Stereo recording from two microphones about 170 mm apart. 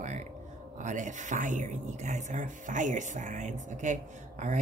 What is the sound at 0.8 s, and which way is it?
A woman's voice, 45° right (ahead or behind).